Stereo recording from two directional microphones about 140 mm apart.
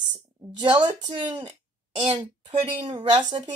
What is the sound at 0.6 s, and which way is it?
Speech, 35° right (ahead or behind).